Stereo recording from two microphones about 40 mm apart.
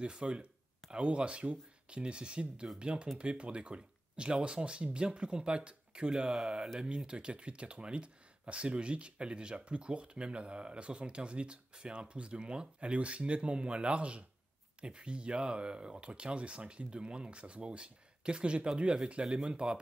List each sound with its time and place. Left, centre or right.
0.0 s speech: right